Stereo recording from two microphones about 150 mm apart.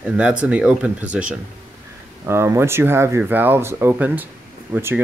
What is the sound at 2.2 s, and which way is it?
Speech, 20° right (ahead or behind).